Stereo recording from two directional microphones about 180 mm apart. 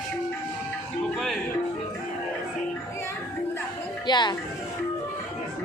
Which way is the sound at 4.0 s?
25° left (ahead or behind).